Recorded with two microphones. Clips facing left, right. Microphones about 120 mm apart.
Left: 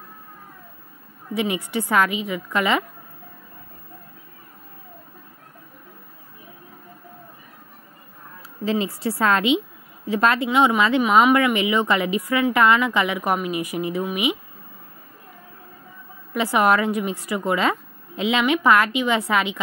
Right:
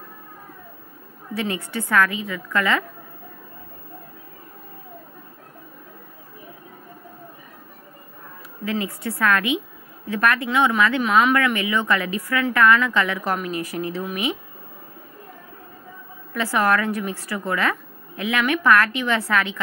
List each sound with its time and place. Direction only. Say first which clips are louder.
1.3 s a woman's voice: left 3 dB; 15° left (ahead or behind)
8.6 s a woman's voice: left 3 dB; 25° left (ahead or behind)
16.3 s a woman's voice: left 2 dB; 20° left (ahead or behind)